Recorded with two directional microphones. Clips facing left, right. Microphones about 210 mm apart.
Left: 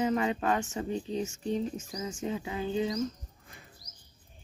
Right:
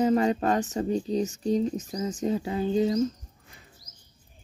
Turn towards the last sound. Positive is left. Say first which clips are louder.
# right 6 dB
turn(degrees=-40)  # may be behind; listen again after turning